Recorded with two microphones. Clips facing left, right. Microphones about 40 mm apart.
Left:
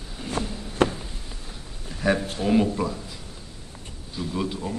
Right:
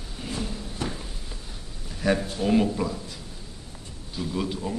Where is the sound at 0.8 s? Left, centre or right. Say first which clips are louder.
Left 11 dB; left.